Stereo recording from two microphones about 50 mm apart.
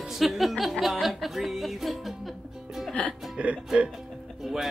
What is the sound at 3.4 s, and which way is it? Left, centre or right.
Speech, right.